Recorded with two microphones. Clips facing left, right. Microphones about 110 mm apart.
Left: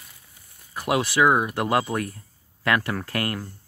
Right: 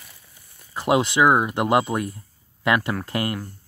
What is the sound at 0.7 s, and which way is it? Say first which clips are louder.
Speech: right 3 dB; 25° right (ahead or behind).